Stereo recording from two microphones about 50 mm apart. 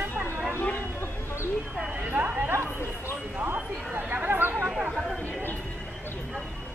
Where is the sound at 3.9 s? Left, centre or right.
Right.